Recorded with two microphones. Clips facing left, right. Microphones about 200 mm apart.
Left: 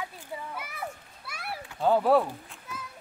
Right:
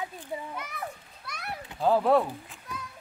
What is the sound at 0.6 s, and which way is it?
Children playing, 5° left (ahead or behind).